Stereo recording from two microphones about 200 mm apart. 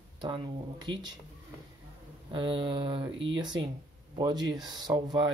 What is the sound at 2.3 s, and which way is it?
Speech, 25° right (ahead or behind).